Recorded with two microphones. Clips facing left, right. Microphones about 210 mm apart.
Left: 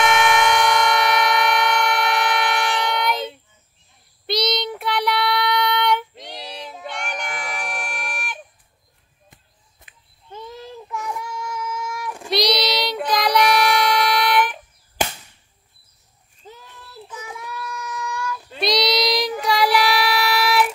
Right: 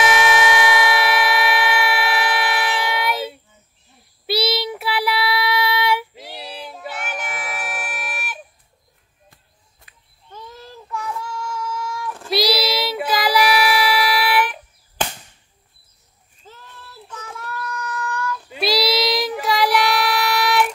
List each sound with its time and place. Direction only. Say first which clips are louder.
0.0 s siren: even; 5° right (ahead or behind)
4.3 s child singing: right 1 dB; 5° right (ahead or behind)
9.3 s child singing: left 1 dB; 20° left (ahead or behind)
12.3 s child singing: right 1 dB; centre (ahead or behind)
16.4 s child singing: left 1 dB; 15° left (ahead or behind)
18.5 s child singing: even; 5° right (ahead or behind)